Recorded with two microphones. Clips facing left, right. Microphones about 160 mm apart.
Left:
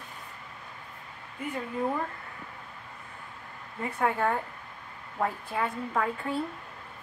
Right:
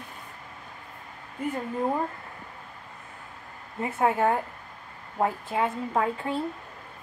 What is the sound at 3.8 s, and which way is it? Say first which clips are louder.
A woman's voice: right 4 dB; 25° right (ahead or behind).